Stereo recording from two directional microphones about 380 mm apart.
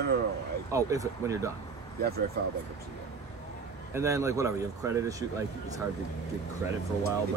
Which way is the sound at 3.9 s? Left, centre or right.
Centre.